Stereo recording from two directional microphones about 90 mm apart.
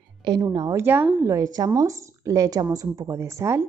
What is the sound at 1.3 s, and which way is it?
A woman's voice, 40° right (ahead or behind).